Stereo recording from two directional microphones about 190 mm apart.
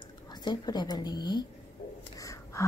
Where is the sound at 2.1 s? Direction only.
15° left (ahead or behind).